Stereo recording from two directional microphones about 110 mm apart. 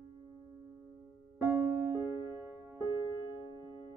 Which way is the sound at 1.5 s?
25° right (ahead or behind).